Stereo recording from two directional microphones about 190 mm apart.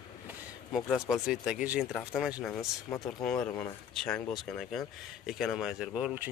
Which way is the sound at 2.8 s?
20° left (ahead or behind).